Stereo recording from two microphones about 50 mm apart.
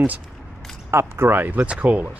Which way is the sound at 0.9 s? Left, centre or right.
Right.